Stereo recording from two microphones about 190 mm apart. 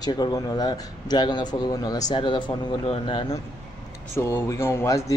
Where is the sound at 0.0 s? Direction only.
20° left (ahead or behind).